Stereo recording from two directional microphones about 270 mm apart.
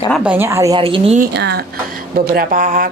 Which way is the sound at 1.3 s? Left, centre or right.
Right.